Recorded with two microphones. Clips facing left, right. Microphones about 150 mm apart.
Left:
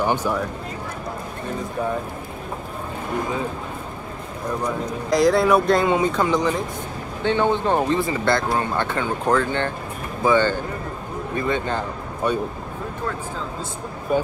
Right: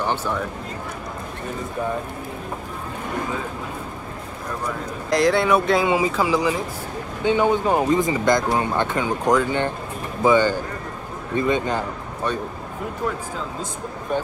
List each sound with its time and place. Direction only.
0.0 s speech: 10° left (ahead or behind)
5.1 s speech: centre (ahead or behind); by 11.8 s 15° right (ahead or behind)
12.2 s speech: 10° left (ahead or behind)
14.1 s speech: 5° left (ahead or behind)